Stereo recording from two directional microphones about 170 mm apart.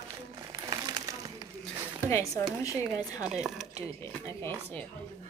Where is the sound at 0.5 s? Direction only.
20° right (ahead or behind).